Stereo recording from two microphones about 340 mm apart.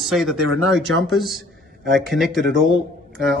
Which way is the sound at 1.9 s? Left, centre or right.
Centre.